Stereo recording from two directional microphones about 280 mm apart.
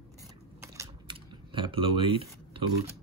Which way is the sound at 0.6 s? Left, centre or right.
Centre.